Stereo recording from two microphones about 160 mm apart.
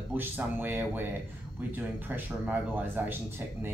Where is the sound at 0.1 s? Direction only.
10° right (ahead or behind).